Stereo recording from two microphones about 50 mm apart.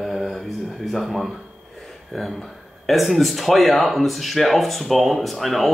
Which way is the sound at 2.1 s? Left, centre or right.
Centre.